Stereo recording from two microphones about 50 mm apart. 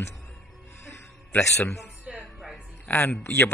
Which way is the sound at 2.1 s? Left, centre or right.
Centre.